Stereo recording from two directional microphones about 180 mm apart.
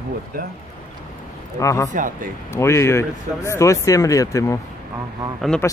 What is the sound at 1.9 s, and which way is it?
Speech, 45° right (ahead or behind).